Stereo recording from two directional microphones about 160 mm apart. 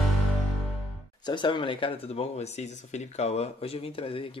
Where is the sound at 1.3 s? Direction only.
30° left (ahead or behind).